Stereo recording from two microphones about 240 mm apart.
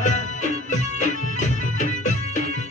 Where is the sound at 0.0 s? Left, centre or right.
Left.